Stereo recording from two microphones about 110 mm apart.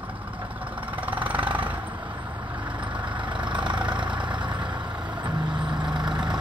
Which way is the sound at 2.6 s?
50° right (ahead or behind).